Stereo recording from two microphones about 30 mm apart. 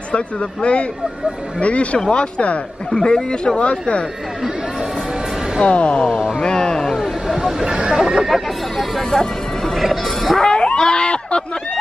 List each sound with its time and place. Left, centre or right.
0.1 s speech: left
2.9 s speech: left
5.7 s speech: left
6.4 s a sound: left
7.0 s a sound: centre
7.6 s speech: right
8.3 s hubbub: centre
9.8 s music: centre
10.4 s a sound: left